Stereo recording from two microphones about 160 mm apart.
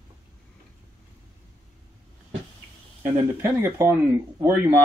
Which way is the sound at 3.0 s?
15° right (ahead or behind).